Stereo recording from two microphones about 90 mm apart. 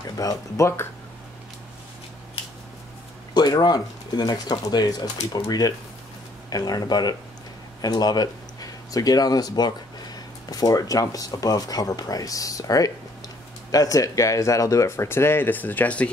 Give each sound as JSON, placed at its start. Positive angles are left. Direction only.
{"t": 0.2, "sound": "speech", "side_deg": 45}
{"t": 3.3, "sound": "speech", "side_deg": 50}